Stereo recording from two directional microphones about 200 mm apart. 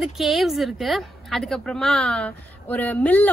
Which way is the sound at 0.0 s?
Centre (ahead or behind).